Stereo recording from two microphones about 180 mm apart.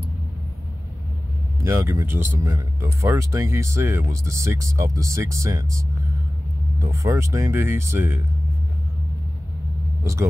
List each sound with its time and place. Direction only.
1.6 s speech: 15° right (ahead or behind)